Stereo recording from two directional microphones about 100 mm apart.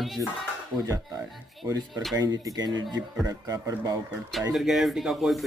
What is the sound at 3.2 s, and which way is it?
Speech, 35° right (ahead or behind).